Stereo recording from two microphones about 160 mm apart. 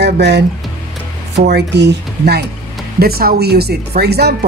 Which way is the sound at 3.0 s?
70° right (ahead or behind).